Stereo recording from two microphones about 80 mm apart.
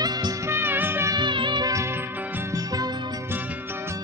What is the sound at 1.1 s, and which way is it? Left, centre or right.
Music, right.